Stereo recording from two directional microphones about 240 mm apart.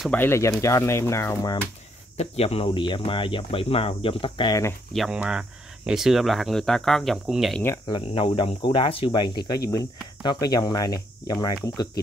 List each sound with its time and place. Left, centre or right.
0.0 s speech: centre
2.1 s speech: left
4.9 s speech: centre
7.6 s speech: centre